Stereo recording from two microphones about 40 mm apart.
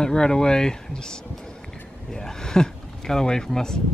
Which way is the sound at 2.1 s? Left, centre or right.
Centre.